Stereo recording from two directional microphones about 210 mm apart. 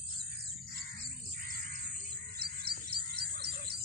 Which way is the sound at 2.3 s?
50° right (ahead or behind).